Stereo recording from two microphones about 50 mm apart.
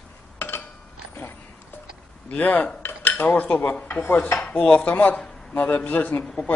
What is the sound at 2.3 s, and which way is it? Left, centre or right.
Cutlery, left.